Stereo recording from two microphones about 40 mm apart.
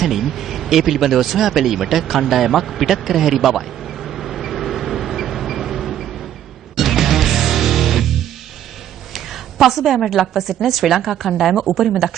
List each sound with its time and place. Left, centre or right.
0.0 s a sound: centre
6.8 s music: centre
9.1 s a woman's voice: centre